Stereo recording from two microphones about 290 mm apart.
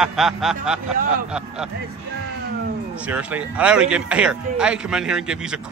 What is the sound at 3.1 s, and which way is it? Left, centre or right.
Speech, centre.